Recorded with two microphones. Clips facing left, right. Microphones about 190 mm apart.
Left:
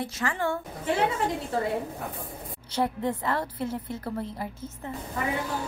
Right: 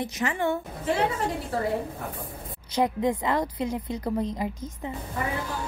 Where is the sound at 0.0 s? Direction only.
20° right (ahead or behind).